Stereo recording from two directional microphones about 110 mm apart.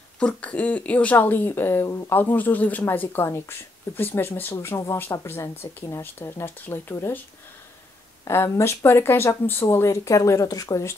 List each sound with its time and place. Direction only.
0.2 s speech: 10° left (ahead or behind)
8.3 s speech: 25° left (ahead or behind)